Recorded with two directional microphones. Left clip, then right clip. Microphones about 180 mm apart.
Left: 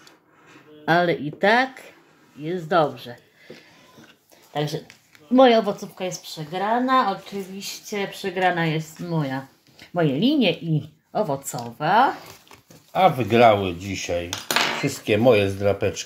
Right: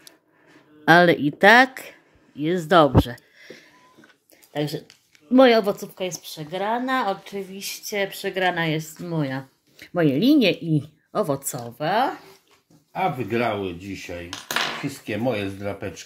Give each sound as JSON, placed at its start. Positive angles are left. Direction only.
{"t": 0.8, "sound": "speech", "side_deg": -45}
{"t": 4.5, "sound": "speech", "side_deg": -25}
{"t": 5.3, "sound": "speech", "side_deg": -40}
{"t": 12.9, "sound": "dishes", "side_deg": 35}